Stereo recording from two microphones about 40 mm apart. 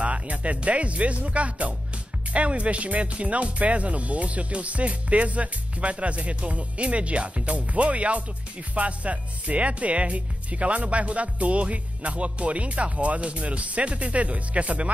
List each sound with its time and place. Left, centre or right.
0.0 s speech: right